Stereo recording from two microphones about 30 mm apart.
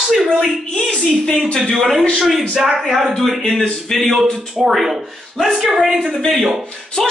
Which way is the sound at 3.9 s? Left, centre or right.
Centre.